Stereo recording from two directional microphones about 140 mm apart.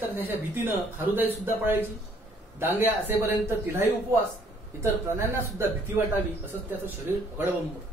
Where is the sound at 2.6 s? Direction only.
15° right (ahead or behind).